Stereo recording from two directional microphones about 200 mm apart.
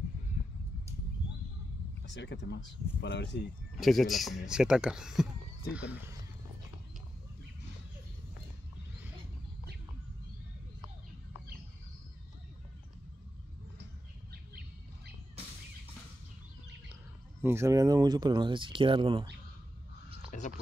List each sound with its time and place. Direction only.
2.0 s speech: 65° left (ahead or behind)
3.8 s speech: centre (ahead or behind)
16.9 s speech: 10° right (ahead or behind)
20.2 s a sound: 35° left (ahead or behind)